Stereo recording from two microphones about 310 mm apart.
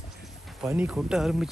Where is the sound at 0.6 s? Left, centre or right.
Centre.